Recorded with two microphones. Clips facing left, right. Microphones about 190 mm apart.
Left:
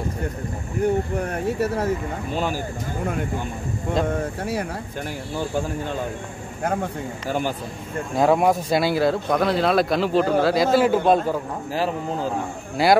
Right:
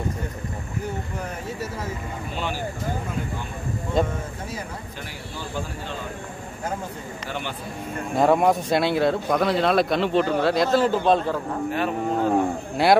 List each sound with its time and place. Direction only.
0.8 s speech: 60° left (ahead or behind)
2.3 s speech: 40° left (ahead or behind)
6.6 s speech: 65° left (ahead or behind)
7.2 s speech: 40° left (ahead or behind)
8.2 s speech: centre (ahead or behind)
11.7 s speech: 30° left (ahead or behind)
12.8 s speech: centre (ahead or behind)